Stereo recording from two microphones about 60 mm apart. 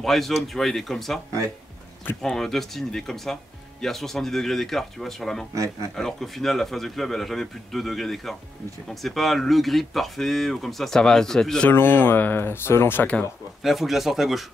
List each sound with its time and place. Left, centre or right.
0.0 s speech: centre
2.2 s speech: centre
11.7 s speech: left
13.6 s speech: centre